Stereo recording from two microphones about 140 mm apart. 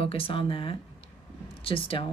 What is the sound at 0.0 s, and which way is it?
Speech, 40° left (ahead or behind).